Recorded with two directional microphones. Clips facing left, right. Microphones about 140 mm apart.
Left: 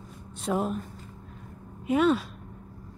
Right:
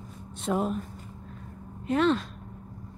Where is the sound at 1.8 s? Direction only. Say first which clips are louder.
Left 1 dB; 10° left (ahead or behind).